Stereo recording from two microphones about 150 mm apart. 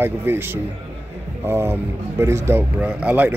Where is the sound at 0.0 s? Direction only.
15° right (ahead or behind).